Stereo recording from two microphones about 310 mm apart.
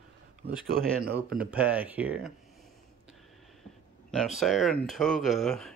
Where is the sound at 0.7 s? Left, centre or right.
Right.